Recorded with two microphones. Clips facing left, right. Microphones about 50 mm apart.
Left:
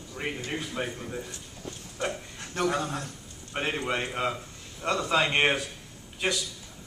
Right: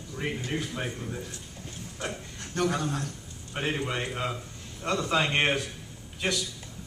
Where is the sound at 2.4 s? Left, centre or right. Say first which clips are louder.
Even; centre.